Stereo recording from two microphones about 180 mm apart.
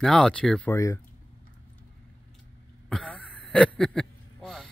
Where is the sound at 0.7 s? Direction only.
15° left (ahead or behind).